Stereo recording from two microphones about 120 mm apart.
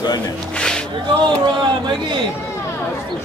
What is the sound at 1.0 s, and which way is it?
Speech, 40° right (ahead or behind).